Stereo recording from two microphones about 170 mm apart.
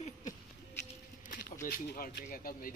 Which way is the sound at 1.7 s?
55° left (ahead or behind).